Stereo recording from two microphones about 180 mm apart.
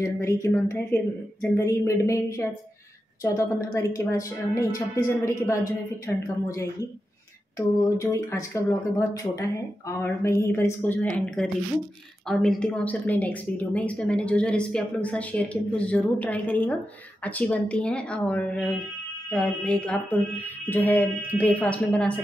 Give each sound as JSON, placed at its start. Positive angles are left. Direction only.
{"t": 0.0, "sound": "speech", "side_deg": 15}